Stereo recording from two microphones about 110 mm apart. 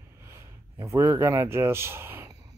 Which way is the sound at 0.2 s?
25° right (ahead or behind).